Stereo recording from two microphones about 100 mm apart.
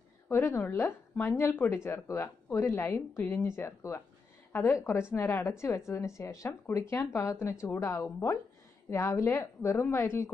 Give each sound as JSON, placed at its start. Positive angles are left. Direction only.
{"t": 0.3, "sound": "speech", "side_deg": 25}